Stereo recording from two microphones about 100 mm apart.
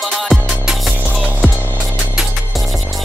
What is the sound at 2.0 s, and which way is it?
Music, 5° right (ahead or behind).